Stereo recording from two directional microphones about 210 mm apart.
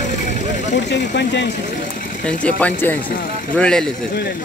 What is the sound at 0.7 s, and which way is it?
Speech, 55° left (ahead or behind).